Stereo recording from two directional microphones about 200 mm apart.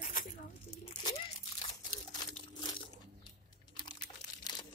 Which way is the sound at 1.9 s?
20° left (ahead or behind).